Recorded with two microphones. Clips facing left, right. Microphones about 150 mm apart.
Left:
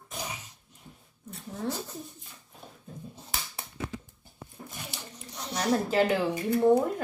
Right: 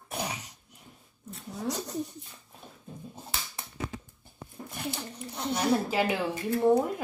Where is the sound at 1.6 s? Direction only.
85° right.